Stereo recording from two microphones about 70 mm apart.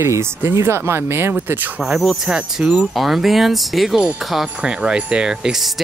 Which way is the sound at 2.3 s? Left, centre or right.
Centre.